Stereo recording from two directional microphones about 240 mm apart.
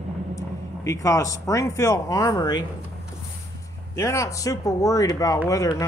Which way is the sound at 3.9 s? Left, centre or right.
Centre.